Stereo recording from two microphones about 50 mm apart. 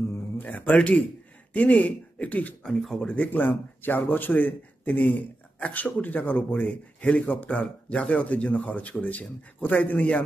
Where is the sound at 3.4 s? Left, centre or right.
Left.